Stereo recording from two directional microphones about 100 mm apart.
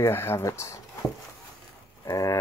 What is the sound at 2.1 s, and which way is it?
Speech, 35° left (ahead or behind).